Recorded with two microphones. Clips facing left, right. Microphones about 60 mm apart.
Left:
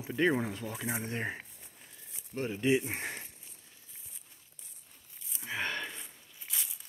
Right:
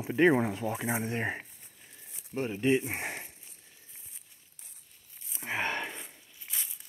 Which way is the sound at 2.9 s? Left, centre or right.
Centre.